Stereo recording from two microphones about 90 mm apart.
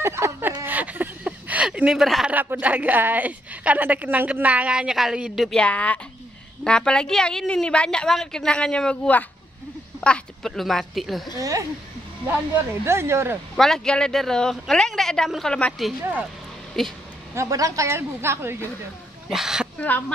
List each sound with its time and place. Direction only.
0.0 s a sound: 30° right (ahead or behind); by 2.3 s centre (ahead or behind)
2.3 s a woman's voice: 20° right (ahead or behind)
5.5 s a woman's voice: 10° left (ahead or behind)
11.3 s speech: 40° right (ahead or behind)
12.8 s a woman's voice: 30° right (ahead or behind)
13.6 s speech: 5° left (ahead or behind)
16.8 s speech: 5° left (ahead or behind)
17.3 s a woman's voice: 35° right (ahead or behind)
19.2 s speech: 5° right (ahead or behind)